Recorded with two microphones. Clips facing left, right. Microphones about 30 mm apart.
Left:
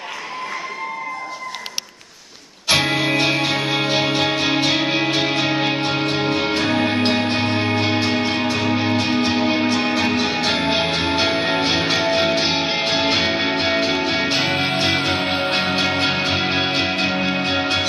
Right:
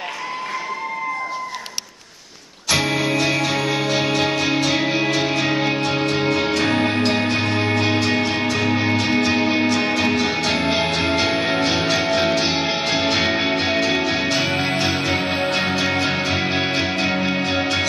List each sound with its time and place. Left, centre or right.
2.7 s music: left
4.8 s music: centre
5.1 s music: left
7.2 s music: left
7.7 s music: left
8.6 s music: centre
8.9 s music: left
9.8 s music: centre
14.8 s music: left
15.1 s music: left